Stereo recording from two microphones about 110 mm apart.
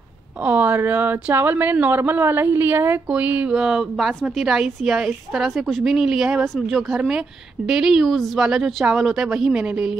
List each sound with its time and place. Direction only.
0.5 s a woman's voice: 15° right (ahead or behind)